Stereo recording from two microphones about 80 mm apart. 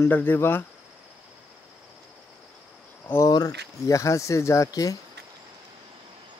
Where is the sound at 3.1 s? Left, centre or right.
Left.